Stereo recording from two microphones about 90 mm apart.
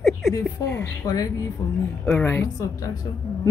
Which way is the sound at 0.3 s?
40° left (ahead or behind).